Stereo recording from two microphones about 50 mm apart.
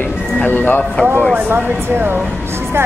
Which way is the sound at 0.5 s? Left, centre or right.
Left.